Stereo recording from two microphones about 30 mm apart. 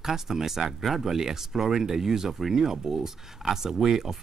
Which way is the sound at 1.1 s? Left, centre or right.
Centre.